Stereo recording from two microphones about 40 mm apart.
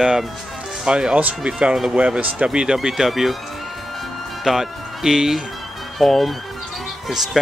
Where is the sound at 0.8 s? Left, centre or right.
Right.